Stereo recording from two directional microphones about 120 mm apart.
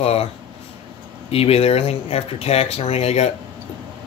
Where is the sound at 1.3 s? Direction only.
55° left (ahead or behind).